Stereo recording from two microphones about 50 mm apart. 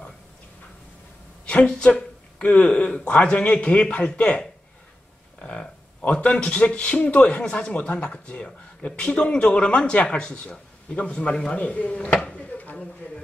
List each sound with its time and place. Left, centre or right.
1.4 s speech: left